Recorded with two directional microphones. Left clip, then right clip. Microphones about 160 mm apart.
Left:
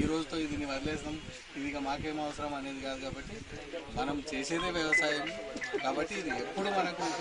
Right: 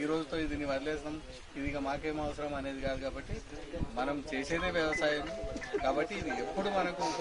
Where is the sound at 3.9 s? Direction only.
5° right (ahead or behind).